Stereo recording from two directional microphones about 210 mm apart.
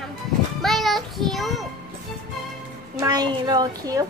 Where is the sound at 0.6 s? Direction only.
Centre (ahead or behind).